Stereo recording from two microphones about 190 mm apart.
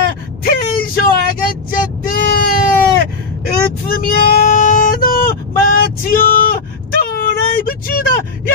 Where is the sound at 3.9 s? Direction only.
50° left (ahead or behind).